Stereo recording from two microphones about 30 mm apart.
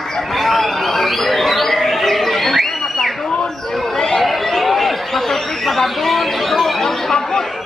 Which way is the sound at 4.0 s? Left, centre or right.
Centre.